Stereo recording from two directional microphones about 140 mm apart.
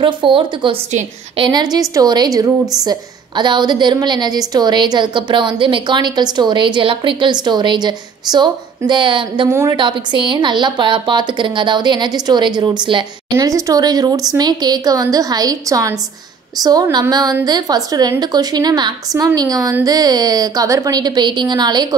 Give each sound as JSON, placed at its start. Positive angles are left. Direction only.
{"t": 0.0, "sound": "a woman's voice", "side_deg": -40}
{"t": 9.5, "sound": "a woman's voice", "side_deg": -20}
{"t": 9.8, "sound": "a woman's voice", "side_deg": -35}